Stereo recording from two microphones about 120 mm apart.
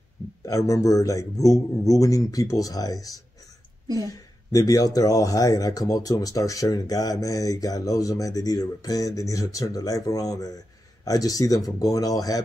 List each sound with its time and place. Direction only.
0.5 s speech: 30° left (ahead or behind)